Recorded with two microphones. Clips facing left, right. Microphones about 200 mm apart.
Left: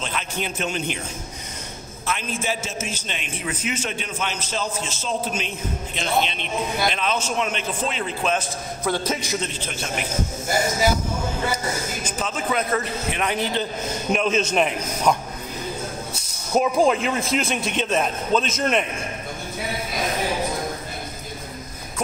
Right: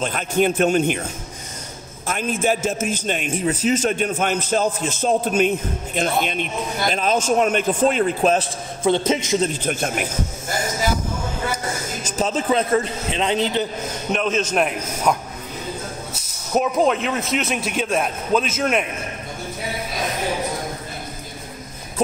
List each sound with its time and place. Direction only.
0.0 s a man's voice: 50° right (ahead or behind)
2.0 s a man's voice: 50° right (ahead or behind)
8.8 s a man's voice: 25° right (ahead or behind)
9.4 s a man's voice: 50° right (ahead or behind)
12.1 s a man's voice: 35° right (ahead or behind); by 13.7 s 20° right (ahead or behind)
14.1 s a man's voice: centre (ahead or behind)
16.5 s a man's voice: centre (ahead or behind)